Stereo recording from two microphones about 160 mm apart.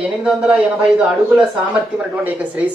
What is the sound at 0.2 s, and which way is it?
Speech, 5° right (ahead or behind).